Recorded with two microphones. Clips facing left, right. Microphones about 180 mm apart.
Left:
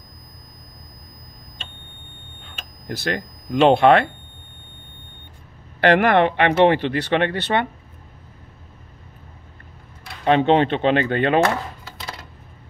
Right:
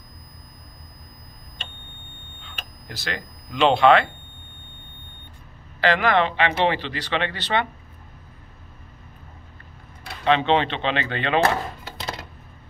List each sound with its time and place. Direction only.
2.4 s speech: 55° left (ahead or behind)
5.8 s speech: 60° left (ahead or behind)
10.2 s speech: 45° left (ahead or behind)